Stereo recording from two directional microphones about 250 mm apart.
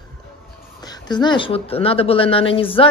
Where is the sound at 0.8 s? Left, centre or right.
Centre.